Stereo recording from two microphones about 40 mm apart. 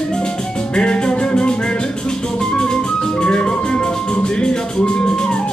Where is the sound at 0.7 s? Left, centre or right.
Left.